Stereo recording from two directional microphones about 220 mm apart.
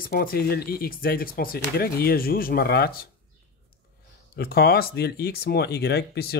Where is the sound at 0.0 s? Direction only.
40° left (ahead or behind).